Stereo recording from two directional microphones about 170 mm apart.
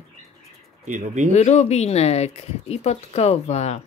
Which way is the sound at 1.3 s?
40° left (ahead or behind).